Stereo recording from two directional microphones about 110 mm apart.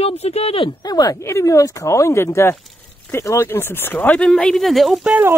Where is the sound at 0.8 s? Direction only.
35° left (ahead or behind); by 5.2 s 5° right (ahead or behind).